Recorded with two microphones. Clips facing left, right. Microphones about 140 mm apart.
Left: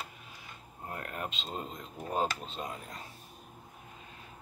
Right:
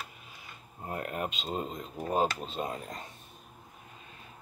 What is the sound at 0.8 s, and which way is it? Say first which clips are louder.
Speech: right 5 dB; 20° right (ahead or behind).